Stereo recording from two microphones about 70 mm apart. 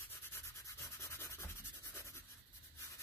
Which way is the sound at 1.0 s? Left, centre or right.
Left.